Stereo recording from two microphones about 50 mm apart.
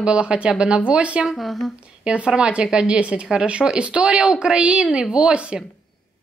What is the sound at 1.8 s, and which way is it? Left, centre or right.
A woman's voice, right.